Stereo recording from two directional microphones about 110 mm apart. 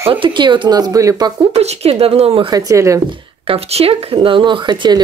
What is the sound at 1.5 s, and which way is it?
Speech, 75° right (ahead or behind).